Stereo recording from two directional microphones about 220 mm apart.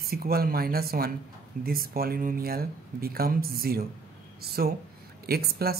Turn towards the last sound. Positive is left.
turn(degrees=-45)  # may be behind; listen again after turning